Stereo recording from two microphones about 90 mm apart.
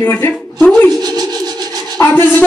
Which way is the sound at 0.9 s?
50° right (ahead or behind).